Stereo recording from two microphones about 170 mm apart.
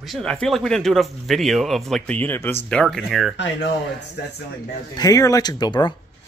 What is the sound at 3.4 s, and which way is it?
Speech, 90° left.